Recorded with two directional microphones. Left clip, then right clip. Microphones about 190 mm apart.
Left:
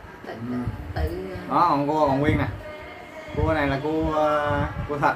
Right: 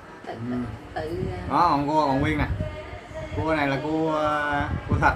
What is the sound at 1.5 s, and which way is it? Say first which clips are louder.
Speech: even; 15° right (ahead or behind).